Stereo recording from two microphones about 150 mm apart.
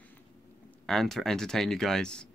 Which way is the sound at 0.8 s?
Centre (ahead or behind).